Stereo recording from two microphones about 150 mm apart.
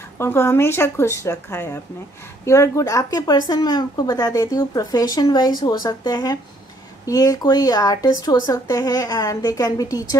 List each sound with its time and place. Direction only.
0.2 s speech: 15° left (ahead or behind)